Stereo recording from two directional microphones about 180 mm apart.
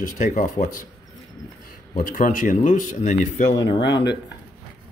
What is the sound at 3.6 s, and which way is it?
Speech, 25° left (ahead or behind).